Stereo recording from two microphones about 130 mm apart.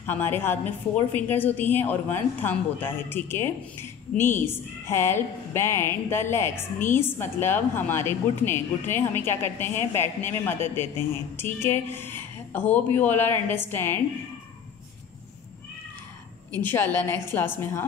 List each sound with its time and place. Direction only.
0.0 s a woman's voice: 15° left (ahead or behind)
16.6 s a woman's voice: 15° left (ahead or behind)